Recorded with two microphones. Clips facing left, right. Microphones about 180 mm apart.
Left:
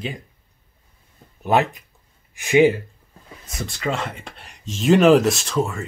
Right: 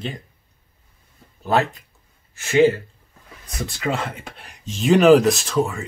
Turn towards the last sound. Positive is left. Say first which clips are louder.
# right 1 dB
turn(degrees=0)  # may be behind; listen again after turning